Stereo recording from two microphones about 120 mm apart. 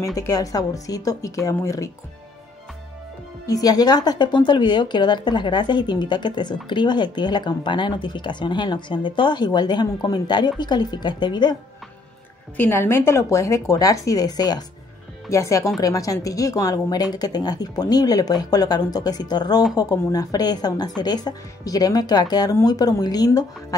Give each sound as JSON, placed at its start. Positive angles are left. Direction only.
{"t": 0.0, "sound": "speech", "side_deg": 30}
{"t": 3.4, "sound": "speech", "side_deg": 30}
{"t": 12.5, "sound": "speech", "side_deg": 20}